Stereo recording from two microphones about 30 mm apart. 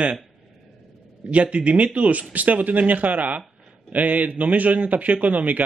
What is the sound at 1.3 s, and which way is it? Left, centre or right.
A man's voice, right.